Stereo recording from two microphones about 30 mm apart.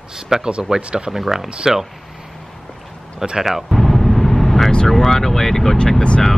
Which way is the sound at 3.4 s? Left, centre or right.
Centre.